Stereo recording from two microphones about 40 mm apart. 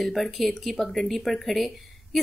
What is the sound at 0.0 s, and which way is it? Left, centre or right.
Speech, centre.